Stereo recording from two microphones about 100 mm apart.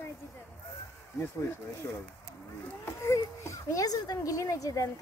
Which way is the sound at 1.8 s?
25° left (ahead or behind).